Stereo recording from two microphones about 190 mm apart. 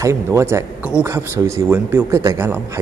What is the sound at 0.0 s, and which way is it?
Speech, 15° right (ahead or behind).